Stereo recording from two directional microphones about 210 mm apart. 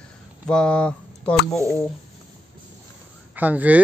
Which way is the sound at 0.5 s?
5° left (ahead or behind).